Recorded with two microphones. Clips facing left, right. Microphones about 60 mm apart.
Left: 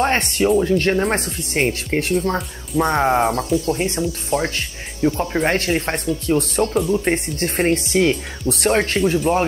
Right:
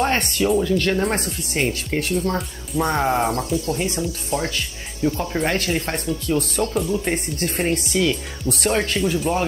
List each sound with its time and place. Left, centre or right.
0.0 s speech: left
2.8 s speech: left
5.0 s speech: left